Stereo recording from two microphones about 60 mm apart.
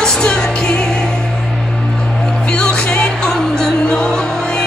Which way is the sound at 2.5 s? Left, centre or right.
Centre.